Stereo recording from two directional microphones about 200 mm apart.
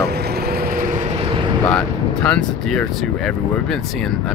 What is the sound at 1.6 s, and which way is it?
Speech, 5° left (ahead or behind).